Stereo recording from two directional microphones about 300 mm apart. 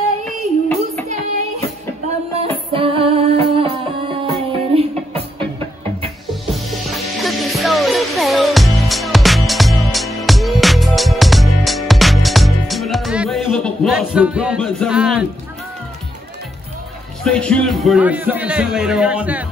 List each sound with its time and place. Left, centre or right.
1.0 s a sound: right
2.7 s music: centre
6.5 s music: centre
17.2 s a man's voice: centre